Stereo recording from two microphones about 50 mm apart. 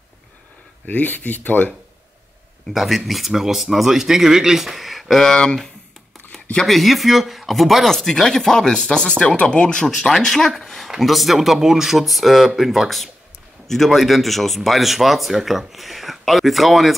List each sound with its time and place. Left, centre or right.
0.8 s speech: left
2.7 s speech: centre
5.3 s speech: centre
6.7 s speech: centre